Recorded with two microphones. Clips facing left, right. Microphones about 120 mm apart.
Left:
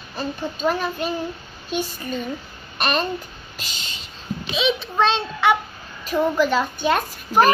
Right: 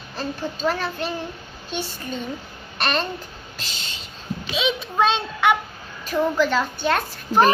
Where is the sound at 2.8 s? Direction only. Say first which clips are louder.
Left 1 dB; 10° left (ahead or behind).